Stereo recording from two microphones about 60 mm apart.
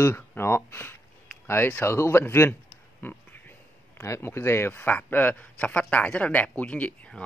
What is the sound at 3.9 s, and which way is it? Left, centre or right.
A man's voice, left.